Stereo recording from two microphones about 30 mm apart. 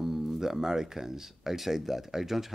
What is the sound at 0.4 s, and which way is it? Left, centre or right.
Speech, centre.